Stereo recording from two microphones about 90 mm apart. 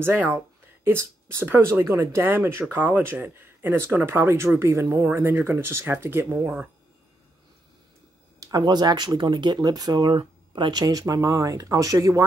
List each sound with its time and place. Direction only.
0.0 s speech: 25° right (ahead or behind)
6.4 s speech: 15° right (ahead or behind)
8.4 s speech: 45° right (ahead or behind)